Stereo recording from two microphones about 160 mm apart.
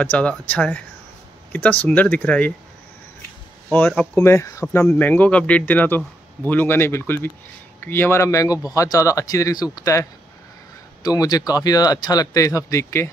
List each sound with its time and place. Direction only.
0.0 s a man's voice: 10° left (ahead or behind)
3.7 s a man's voice: 10° left (ahead or behind)